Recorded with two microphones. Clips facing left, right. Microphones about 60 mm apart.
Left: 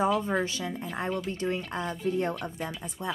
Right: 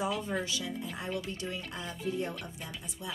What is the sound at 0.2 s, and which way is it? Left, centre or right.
Speech, left.